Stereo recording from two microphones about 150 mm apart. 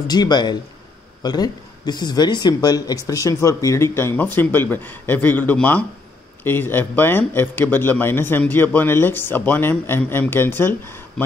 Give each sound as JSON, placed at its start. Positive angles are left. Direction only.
{"t": 0.0, "sound": "speech", "side_deg": 25}